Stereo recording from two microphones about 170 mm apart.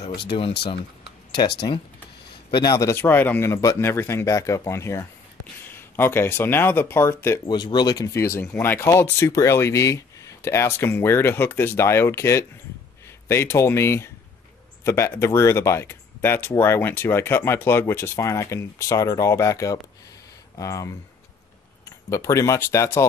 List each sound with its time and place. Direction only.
2.5 s speech: 25° left (ahead or behind)
7.4 s speech: 25° left (ahead or behind)